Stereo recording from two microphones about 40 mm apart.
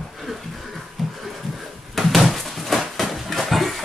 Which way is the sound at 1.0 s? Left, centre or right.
Centre.